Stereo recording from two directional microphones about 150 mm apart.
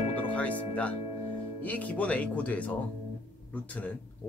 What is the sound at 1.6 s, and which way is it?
Speech, 10° left (ahead or behind).